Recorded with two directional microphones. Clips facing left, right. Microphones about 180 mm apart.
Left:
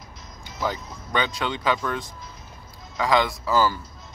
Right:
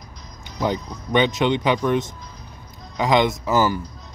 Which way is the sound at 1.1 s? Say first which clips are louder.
Right 8 dB; 20° right (ahead or behind).